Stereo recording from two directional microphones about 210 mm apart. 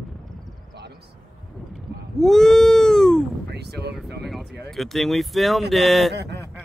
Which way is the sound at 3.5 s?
50° right (ahead or behind).